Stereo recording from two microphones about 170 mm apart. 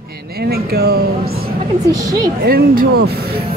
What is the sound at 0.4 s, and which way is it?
Speech, 65° right (ahead or behind).